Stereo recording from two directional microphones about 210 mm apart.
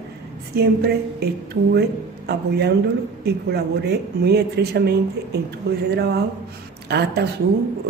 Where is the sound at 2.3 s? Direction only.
50° right (ahead or behind).